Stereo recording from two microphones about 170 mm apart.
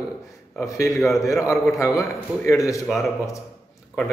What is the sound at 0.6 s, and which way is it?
A man's voice, 15° left (ahead or behind).